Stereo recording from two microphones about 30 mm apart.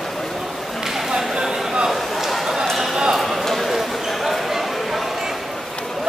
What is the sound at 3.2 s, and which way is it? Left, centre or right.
Clip-clop, centre.